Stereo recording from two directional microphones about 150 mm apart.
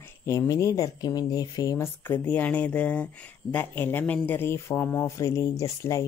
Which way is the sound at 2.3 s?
10° left (ahead or behind).